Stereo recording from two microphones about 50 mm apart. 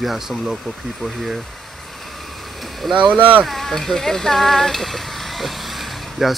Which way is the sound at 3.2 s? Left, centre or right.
Right.